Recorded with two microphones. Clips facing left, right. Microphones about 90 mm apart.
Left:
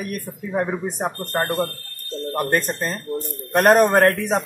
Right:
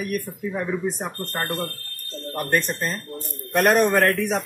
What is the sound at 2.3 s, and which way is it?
Speech, 35° left (ahead or behind).